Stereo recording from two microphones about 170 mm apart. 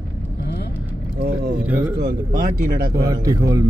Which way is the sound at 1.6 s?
10° right (ahead or behind).